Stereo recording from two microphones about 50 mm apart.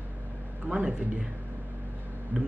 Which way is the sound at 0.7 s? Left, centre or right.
Centre.